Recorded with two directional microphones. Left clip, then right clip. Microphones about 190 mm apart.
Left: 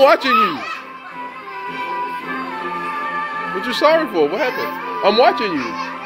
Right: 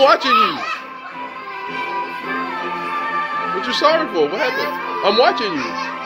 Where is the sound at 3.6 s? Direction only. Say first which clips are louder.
Left 2 dB; 20° left (ahead or behind).